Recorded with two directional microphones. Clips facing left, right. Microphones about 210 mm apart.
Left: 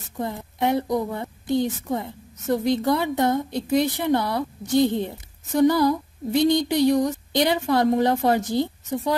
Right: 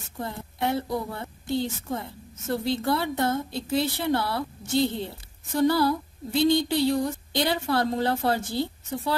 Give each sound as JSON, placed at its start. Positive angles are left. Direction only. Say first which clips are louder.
{"t": 0.2, "sound": "a woman's voice", "louder": "left 5 dB", "side_deg": 20}